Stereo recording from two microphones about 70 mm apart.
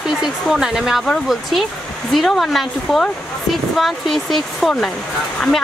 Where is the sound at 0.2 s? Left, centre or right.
Centre.